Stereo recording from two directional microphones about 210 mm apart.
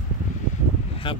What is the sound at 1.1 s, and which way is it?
Speech, 25° left (ahead or behind).